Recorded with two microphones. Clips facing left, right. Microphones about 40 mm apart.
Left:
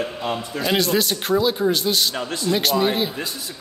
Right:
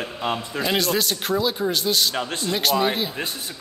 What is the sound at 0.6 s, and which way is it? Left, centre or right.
A man's voice, centre.